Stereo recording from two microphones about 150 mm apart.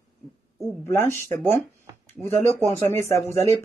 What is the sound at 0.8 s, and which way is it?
Speech, 15° left (ahead or behind).